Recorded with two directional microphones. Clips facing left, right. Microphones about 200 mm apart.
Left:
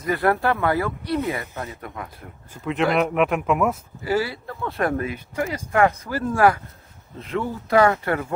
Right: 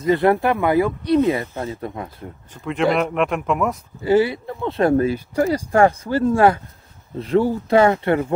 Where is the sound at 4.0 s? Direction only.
25° right (ahead or behind).